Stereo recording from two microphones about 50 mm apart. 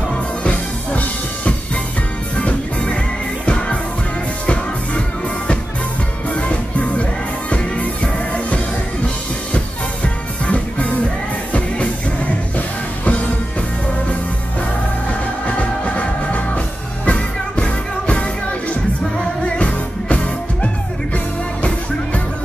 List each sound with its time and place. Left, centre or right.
0.4 s music: left
6.3 s music: left
10.0 s music: left
15.4 s music: left